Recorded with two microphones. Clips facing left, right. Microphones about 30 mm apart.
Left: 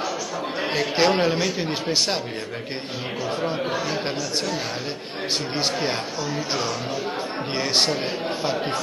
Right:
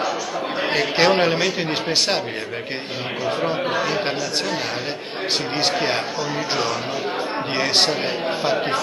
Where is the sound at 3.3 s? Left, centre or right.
Right.